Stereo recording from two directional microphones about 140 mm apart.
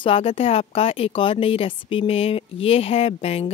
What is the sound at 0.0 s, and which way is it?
Speech, 45° left (ahead or behind).